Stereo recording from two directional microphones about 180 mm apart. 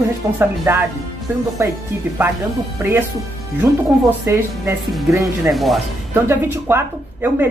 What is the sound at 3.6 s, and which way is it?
Speech, 10° right (ahead or behind).